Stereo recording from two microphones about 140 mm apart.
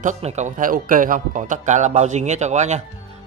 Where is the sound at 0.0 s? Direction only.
55° right (ahead or behind).